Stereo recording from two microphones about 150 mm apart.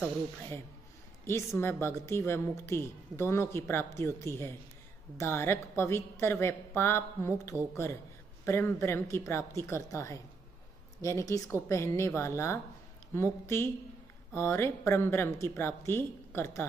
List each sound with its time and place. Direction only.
1.2 s a woman's voice: 20° left (ahead or behind)